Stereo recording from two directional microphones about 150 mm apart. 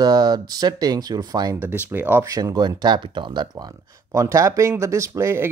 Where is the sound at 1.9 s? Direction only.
15° right (ahead or behind).